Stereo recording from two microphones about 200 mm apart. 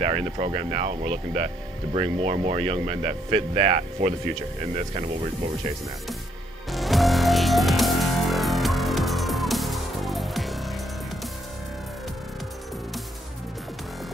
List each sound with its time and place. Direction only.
0.0 s speech: 30° right (ahead or behind)
6.7 s music: centre (ahead or behind)